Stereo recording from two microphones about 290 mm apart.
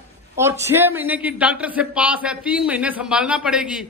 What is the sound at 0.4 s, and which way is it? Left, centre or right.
A man's voice, centre.